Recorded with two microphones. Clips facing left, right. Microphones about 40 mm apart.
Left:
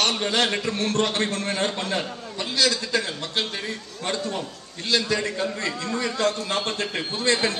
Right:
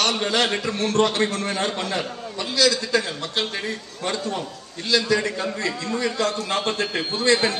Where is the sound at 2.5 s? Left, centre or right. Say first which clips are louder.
Right 3 dB; left.